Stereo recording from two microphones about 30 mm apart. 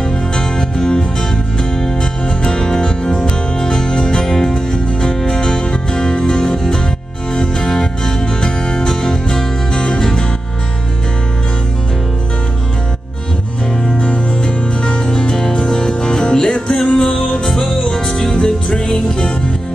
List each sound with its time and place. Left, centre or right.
0.4 s music: left
4.5 s music: left
13.9 s music: left